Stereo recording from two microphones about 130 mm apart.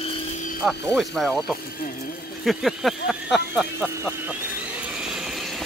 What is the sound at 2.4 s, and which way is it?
Speech, centre (ahead or behind).